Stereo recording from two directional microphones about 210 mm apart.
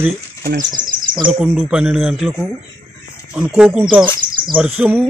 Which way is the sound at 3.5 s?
Centre (ahead or behind).